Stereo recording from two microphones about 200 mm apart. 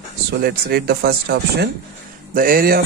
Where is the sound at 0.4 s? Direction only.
50° right (ahead or behind).